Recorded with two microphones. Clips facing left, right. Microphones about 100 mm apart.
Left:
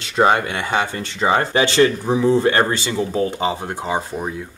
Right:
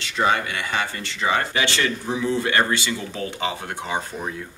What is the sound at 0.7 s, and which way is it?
Speech, 30° left (ahead or behind).